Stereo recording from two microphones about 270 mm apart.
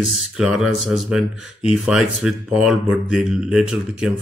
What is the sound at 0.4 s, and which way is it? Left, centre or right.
Speech, centre.